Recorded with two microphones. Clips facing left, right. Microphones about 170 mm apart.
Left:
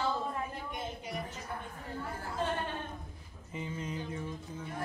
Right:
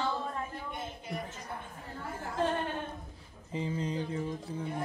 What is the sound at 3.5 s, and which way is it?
Speech, 30° right (ahead or behind).